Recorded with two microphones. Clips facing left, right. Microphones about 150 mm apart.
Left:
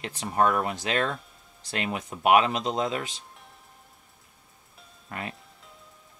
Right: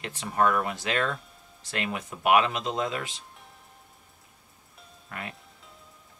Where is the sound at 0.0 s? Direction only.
25° left (ahead or behind).